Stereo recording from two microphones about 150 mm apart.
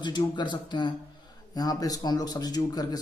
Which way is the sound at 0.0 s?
30° left (ahead or behind).